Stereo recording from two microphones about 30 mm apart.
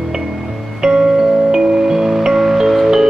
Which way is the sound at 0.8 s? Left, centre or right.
Right.